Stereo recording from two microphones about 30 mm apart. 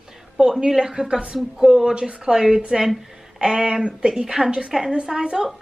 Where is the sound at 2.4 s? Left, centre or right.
Centre.